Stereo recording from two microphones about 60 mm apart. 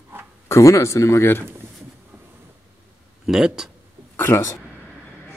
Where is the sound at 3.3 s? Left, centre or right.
Centre.